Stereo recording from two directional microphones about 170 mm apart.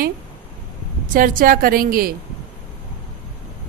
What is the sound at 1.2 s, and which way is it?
Speech, 55° right (ahead or behind).